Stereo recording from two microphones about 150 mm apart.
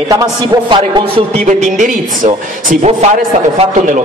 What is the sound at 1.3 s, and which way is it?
A man's voice, 50° right (ahead or behind).